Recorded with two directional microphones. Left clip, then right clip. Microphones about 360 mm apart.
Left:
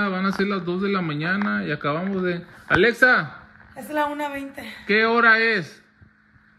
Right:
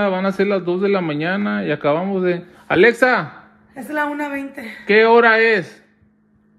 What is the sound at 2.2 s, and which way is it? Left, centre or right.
Speech, centre.